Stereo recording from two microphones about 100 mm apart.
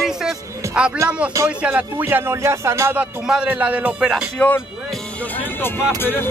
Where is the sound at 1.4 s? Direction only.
15° right (ahead or behind).